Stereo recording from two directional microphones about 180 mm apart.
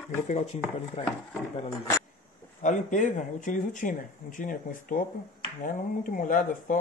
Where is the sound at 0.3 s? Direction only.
40° left (ahead or behind).